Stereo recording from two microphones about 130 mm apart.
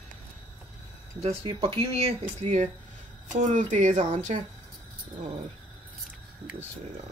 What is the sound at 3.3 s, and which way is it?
Speech, 70° right (ahead or behind).